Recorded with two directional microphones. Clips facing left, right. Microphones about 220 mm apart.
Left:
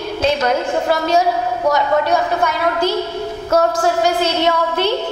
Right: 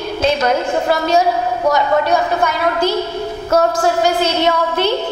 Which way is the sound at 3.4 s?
25° right (ahead or behind).